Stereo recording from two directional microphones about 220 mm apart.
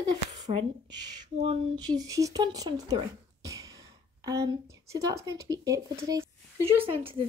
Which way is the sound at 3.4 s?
15° right (ahead or behind).